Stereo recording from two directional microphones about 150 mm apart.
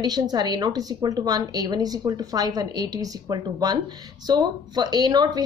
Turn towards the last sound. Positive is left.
turn(degrees=-25)  # may be behind; listen again after turning